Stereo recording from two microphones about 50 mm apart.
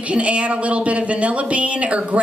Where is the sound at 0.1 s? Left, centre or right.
Right.